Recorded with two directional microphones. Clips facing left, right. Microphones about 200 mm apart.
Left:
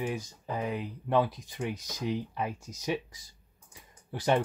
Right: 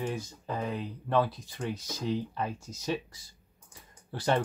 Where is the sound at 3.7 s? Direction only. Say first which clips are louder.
Left 1 dB; 15° left (ahead or behind).